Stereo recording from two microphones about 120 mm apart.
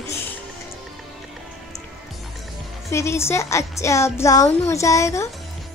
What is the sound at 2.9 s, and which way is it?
A woman's voice, 25° left (ahead or behind).